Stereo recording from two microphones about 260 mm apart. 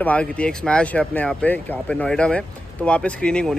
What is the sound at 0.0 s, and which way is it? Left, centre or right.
Speech, centre.